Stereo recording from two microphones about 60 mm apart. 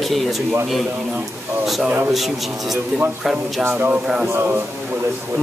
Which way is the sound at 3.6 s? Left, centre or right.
Right.